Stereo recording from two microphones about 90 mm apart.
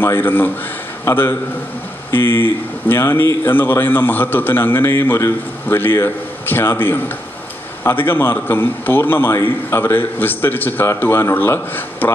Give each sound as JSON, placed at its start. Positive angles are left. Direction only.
{"t": 0.0, "sound": "a man's voice", "side_deg": 25}